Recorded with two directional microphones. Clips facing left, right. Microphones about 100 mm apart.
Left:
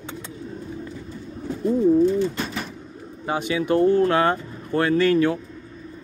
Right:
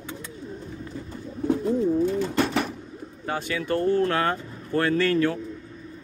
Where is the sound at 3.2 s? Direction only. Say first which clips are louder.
Left 5 dB; 15° left (ahead or behind).